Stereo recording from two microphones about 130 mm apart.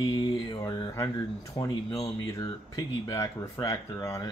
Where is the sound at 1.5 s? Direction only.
25° left (ahead or behind).